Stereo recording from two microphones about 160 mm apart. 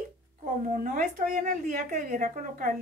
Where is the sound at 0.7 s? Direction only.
55° right (ahead or behind).